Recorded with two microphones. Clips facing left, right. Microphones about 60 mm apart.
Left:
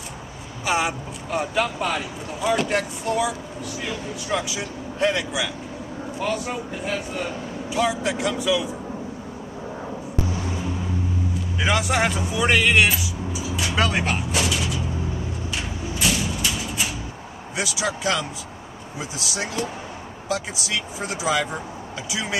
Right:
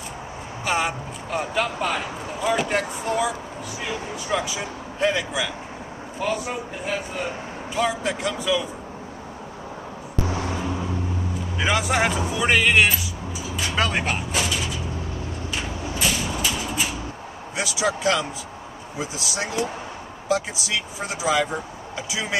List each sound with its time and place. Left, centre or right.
0.7 s speech: centre
11.6 s speech: centre
15.5 s a sound: centre
17.6 s speech: centre
20.2 s speech: centre